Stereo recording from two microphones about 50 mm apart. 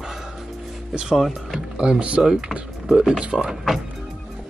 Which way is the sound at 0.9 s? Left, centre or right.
Centre.